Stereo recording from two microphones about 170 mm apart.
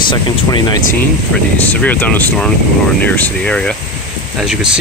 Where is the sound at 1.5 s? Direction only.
10° left (ahead or behind).